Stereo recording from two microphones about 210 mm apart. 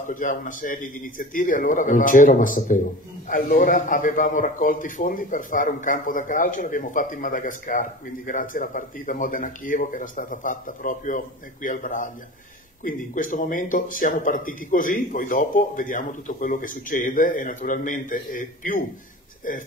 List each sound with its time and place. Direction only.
0.1 s a man's voice: 40° left (ahead or behind)